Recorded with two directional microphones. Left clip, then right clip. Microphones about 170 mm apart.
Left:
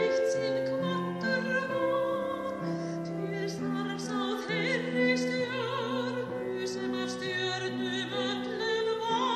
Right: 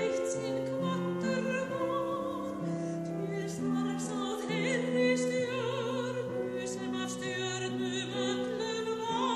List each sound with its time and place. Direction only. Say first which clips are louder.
0.8 s music: left 2 dB; centre (ahead or behind)
4.6 s music: even; 5° left (ahead or behind)